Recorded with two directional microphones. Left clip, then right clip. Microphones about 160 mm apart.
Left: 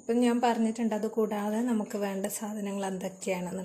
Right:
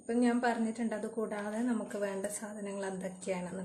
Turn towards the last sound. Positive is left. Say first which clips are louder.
# left 5 dB
turn(degrees=40)  # may be behind; listen again after turning